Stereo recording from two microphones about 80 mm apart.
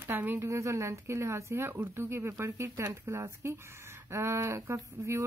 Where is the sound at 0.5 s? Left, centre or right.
Right.